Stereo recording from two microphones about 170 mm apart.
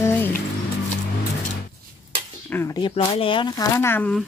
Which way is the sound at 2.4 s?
10° left (ahead or behind).